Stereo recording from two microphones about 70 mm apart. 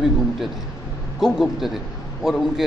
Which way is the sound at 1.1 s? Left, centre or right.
Centre.